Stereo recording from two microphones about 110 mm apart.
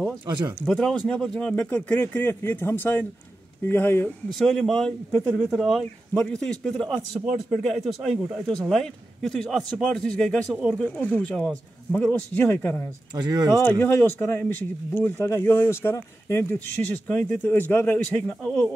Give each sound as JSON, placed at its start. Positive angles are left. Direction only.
{"t": 0.7, "sound": "speech", "side_deg": 5}
{"t": 4.3, "sound": "a man's voice", "side_deg": 0}
{"t": 11.0, "sound": "speech", "side_deg": 10}
{"t": 13.1, "sound": "speech", "side_deg": -40}
{"t": 13.6, "sound": "speech", "side_deg": 20}